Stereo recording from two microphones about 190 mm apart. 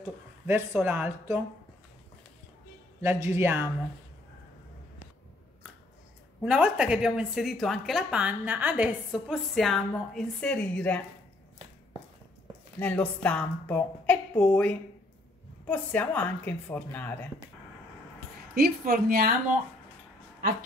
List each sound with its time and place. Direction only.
0.0 s speech: 10° right (ahead or behind)
3.0 s speech: 15° right (ahead or behind)
6.4 s a woman's voice: 5° right (ahead or behind)
12.7 s a woman's voice: 10° left (ahead or behind)
18.5 s speech: 55° right (ahead or behind)